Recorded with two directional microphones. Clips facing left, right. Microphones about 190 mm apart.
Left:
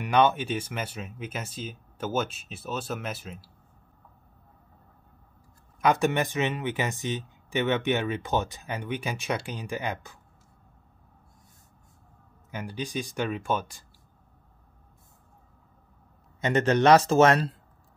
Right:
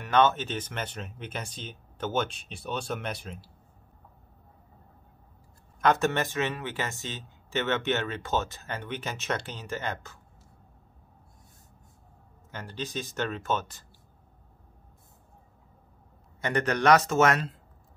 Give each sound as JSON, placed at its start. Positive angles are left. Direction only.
{"t": 0.0, "sound": "speech", "side_deg": 15}
{"t": 5.8, "sound": "speech", "side_deg": 10}
{"t": 12.4, "sound": "speech", "side_deg": 10}
{"t": 16.3, "sound": "speech", "side_deg": 20}